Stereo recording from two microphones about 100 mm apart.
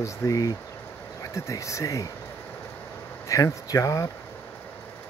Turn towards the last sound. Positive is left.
turn(degrees=35)  # may be behind; listen again after turning